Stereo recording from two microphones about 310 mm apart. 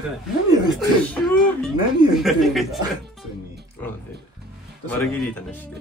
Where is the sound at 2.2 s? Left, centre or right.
Centre.